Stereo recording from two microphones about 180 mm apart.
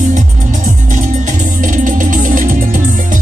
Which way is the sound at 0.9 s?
45° right (ahead or behind).